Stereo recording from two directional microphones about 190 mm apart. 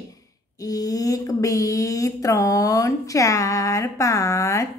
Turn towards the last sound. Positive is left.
turn(degrees=15)  # may be behind; listen again after turning